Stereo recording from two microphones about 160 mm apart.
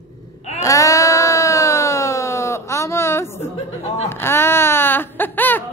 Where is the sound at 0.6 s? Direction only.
20° left (ahead or behind).